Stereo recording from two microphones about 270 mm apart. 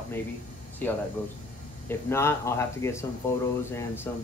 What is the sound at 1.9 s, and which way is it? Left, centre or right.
Speech, centre.